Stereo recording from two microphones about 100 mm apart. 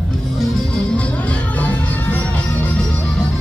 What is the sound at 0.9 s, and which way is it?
Music, 10° left (ahead or behind).